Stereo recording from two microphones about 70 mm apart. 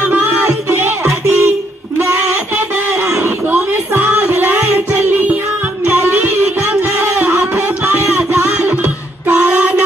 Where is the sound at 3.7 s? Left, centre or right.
Right.